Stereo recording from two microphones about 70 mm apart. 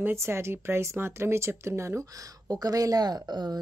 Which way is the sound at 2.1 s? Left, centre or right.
Right.